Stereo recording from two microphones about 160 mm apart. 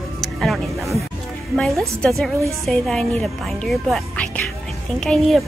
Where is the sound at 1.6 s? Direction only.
Centre (ahead or behind).